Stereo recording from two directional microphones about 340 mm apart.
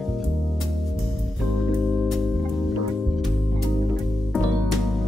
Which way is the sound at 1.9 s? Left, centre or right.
Centre.